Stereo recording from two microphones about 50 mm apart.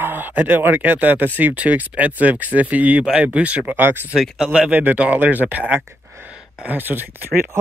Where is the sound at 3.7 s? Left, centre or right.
Right.